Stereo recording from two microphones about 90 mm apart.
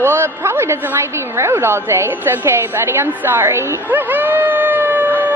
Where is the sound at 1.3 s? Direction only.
30° right (ahead or behind).